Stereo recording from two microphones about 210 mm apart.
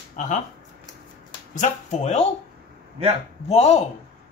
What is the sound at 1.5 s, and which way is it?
Speech, 35° left (ahead or behind).